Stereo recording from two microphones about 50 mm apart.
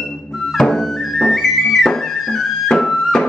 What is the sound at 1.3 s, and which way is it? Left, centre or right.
Flute, centre.